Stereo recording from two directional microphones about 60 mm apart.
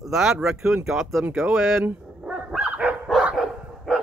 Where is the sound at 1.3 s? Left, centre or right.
Centre.